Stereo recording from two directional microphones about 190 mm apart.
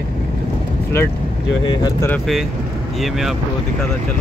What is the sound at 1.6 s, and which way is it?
Speech, 20° left (ahead or behind).